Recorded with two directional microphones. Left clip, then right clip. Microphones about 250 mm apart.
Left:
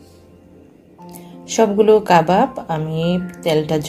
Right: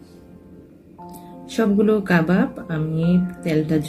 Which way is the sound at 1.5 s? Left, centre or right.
Left.